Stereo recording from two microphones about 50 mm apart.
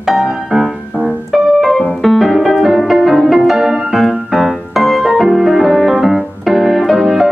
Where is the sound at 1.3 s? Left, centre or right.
Centre.